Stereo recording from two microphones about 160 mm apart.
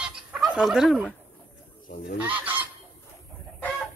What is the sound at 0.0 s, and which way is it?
Fowl, 5° right (ahead or behind).